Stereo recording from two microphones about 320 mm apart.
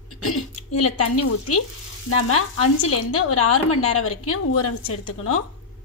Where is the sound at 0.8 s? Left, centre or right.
Left.